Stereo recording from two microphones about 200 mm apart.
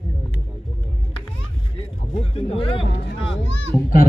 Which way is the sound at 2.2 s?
30° left (ahead or behind).